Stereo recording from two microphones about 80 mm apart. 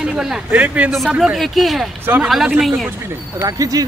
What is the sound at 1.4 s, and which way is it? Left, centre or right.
A man's voice, centre.